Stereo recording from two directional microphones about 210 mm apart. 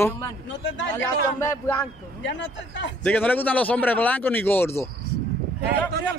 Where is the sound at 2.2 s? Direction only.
60° left (ahead or behind).